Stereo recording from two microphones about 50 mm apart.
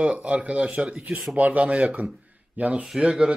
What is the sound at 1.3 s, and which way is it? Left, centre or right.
Speech, right.